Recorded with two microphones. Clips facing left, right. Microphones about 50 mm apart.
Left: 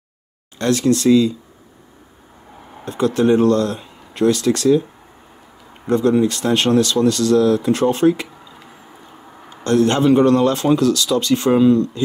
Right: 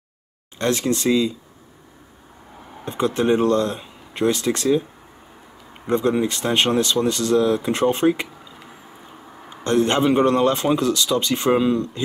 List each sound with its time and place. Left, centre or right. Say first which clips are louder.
0.6 s speech: left 4 dB; right
2.8 s speech: left 4 dB; right
5.9 s speech: left 4 dB; right
8.5 s squish: left 1 dB; centre
9.5 s speech: left 3 dB; right